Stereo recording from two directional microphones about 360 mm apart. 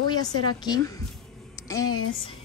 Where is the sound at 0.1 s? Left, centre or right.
Centre.